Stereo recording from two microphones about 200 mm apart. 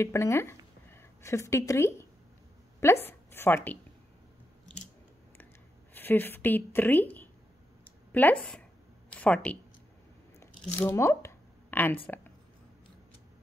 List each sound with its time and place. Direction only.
0.0 s a woman's voice: 15° left (ahead or behind)
5.9 s a woman's voice: 10° left (ahead or behind)
10.4 s a sound: 10° left (ahead or behind)